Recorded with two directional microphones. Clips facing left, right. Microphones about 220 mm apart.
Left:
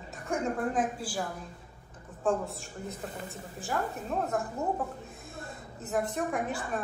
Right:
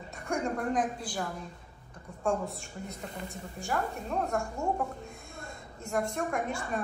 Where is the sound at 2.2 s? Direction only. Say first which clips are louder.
Left 1 dB; centre (ahead or behind).